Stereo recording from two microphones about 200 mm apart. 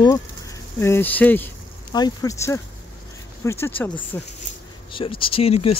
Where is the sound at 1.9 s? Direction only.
20° left (ahead or behind).